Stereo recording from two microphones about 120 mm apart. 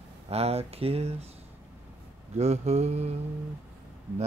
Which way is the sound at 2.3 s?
65° right (ahead or behind).